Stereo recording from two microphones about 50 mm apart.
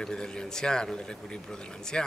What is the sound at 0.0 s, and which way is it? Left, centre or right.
A man's voice, centre.